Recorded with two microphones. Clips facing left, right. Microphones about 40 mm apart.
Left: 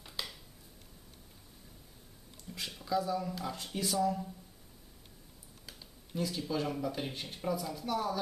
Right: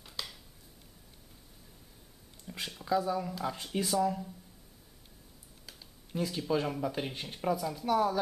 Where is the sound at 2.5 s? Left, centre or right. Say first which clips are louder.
Right 2 dB; centre.